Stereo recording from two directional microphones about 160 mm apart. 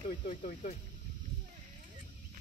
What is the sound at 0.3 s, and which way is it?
Speech, 55° left (ahead or behind).